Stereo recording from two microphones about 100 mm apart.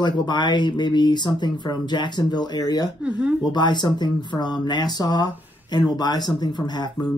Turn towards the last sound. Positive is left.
turn(degrees=45)  # may be behind; listen again after turning